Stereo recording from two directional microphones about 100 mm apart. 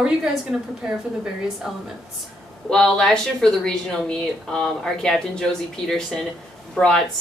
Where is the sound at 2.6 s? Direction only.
5° left (ahead or behind).